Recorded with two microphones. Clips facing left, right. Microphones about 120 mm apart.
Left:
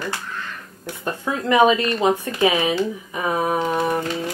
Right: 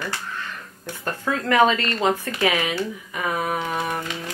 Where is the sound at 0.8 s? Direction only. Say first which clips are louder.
Left 1 dB; 15° left (ahead or behind).